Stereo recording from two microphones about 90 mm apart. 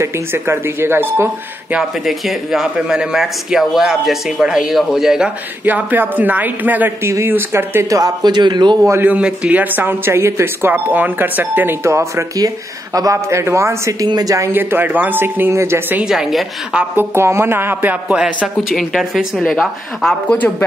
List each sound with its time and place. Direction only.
0.0 s speech: 30° right (ahead or behind)
1.7 s speech: 5° right (ahead or behind)
5.7 s speech: 20° right (ahead or behind)
7.9 s a man's voice: 50° right (ahead or behind)
9.0 s speech: 15° right (ahead or behind)
11.8 s speech: 30° right (ahead or behind)
14.0 s speech: 45° right (ahead or behind)
14.5 s speech: 20° right (ahead or behind)
16.0 s speech: 5° right (ahead or behind)
16.7 s speech: 25° right (ahead or behind)
18.0 s speech: 10° right (ahead or behind)
20.3 s speech: 20° left (ahead or behind)